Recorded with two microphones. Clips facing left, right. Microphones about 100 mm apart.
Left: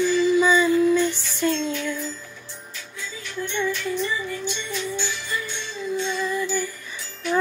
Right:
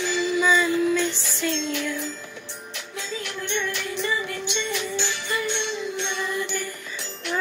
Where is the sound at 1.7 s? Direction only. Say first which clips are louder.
Even; 75° right (ahead or behind).